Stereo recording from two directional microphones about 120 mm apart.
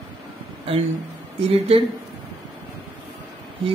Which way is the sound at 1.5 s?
55° right (ahead or behind).